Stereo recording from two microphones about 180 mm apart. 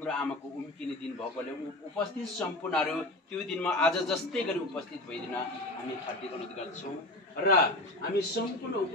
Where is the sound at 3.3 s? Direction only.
5° left (ahead or behind).